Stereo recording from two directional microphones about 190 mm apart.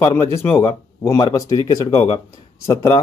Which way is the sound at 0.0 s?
15° left (ahead or behind).